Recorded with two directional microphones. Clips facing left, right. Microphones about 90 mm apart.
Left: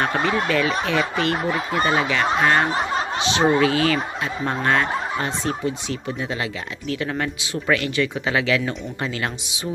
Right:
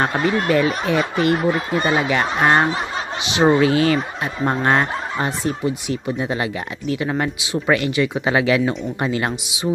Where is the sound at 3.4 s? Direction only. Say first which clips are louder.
Right 4 dB; 30° right (ahead or behind).